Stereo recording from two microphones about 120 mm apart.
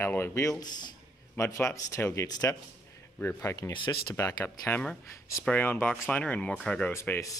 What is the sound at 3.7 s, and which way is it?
Speech, 40° left (ahead or behind).